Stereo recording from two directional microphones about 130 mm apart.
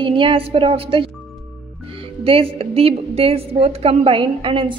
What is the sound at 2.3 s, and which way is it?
A woman's voice, 45° right (ahead or behind).